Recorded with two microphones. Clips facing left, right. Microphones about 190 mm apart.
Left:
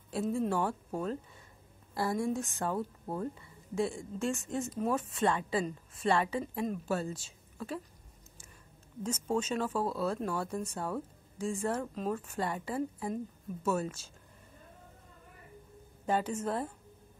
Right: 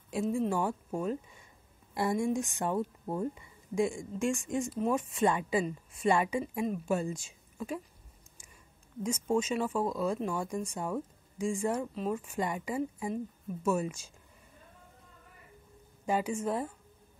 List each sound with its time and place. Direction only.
0.1 s a woman's voice: 10° right (ahead or behind)
9.0 s a woman's voice: 10° right (ahead or behind)
16.1 s a woman's voice: 10° right (ahead or behind)